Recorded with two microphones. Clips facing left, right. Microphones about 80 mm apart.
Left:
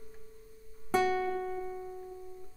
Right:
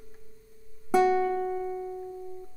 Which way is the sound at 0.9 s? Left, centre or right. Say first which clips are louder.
Right 6 dB; right.